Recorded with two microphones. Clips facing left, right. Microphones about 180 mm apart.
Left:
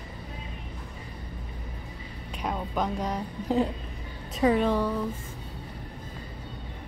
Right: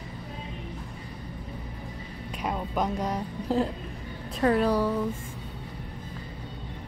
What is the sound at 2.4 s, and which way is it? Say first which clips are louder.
A woman's voice: right 1 dB; 5° right (ahead or behind).